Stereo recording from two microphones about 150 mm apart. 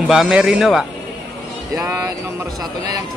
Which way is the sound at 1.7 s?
20° right (ahead or behind).